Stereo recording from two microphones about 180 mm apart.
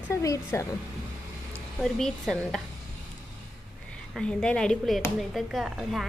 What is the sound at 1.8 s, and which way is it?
Speech, centre (ahead or behind).